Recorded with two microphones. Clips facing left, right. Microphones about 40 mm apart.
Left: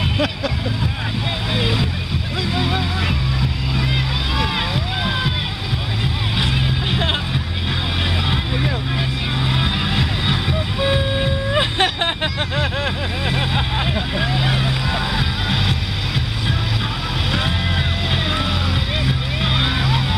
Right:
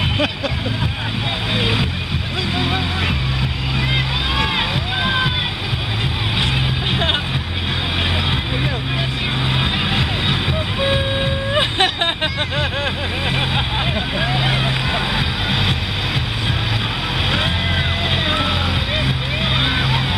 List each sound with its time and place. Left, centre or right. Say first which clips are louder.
1.6 s speech: right 1 dB; right
3.9 s music: right 2 dB; right
9.5 s music: right 1 dB; centre
10.8 s vehicle: even; centre
14.1 s music: right 1 dB; centre
19.0 s vehicle: right 1 dB; centre